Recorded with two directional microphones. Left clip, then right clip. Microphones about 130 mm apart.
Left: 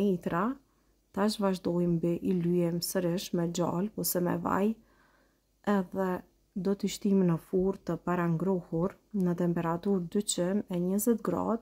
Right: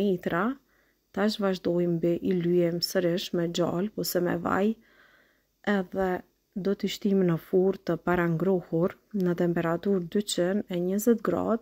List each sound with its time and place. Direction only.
0.1 s speech: 15° right (ahead or behind)